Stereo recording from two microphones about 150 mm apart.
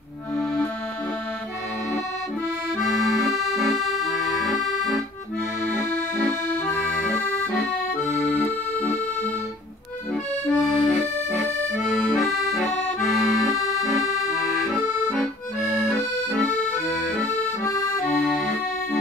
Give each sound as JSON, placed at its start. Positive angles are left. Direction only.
{"t": 3.3, "sound": "accordion", "side_deg": 0}
{"t": 8.0, "sound": "accordion", "side_deg": 10}
{"t": 10.5, "sound": "accordion", "side_deg": 0}
{"t": 14.7, "sound": "accordion", "side_deg": 0}
{"t": 16.0, "sound": "accordion", "side_deg": 10}
{"t": 18.1, "sound": "accordion", "side_deg": 10}